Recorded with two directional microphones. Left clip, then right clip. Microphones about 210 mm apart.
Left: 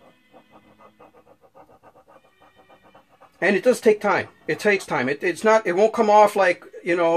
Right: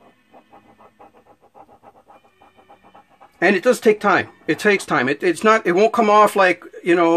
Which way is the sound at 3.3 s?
35° right (ahead or behind).